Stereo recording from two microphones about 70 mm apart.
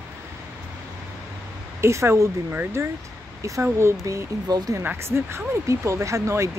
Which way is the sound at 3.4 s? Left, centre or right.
Right.